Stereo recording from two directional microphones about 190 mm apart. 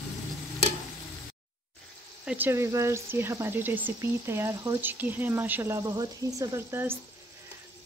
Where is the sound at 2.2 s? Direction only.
10° right (ahead or behind).